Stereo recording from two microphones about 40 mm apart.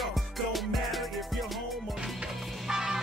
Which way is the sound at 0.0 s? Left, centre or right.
Centre.